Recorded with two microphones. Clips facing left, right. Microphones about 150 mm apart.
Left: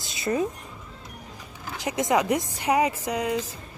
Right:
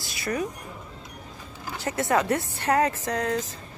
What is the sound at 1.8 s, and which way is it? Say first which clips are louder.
Speech: left 1 dB; 15° left (ahead or behind).